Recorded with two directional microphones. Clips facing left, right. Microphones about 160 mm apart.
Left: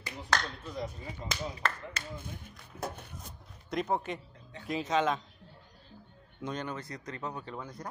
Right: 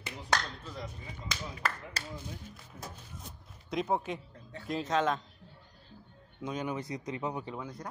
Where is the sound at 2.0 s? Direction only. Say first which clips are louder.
Even; 35° right (ahead or behind).